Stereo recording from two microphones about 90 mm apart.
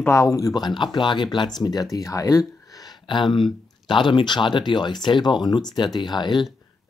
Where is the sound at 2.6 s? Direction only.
45° left (ahead or behind).